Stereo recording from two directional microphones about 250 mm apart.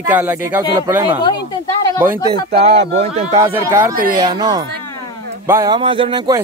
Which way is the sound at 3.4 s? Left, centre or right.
Centre.